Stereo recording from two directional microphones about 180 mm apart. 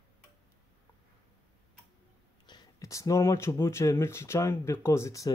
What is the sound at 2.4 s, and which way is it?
Speech, 20° left (ahead or behind).